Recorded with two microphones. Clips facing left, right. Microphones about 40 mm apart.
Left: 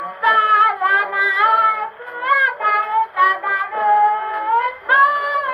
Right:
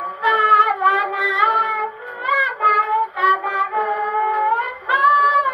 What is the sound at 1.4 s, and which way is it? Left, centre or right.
Music, left.